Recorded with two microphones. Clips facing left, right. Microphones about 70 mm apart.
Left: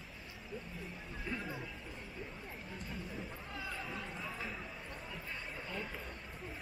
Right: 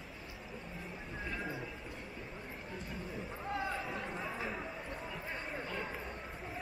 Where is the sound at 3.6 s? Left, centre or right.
Centre.